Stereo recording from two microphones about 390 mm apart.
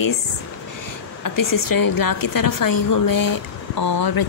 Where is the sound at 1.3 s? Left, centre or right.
Left.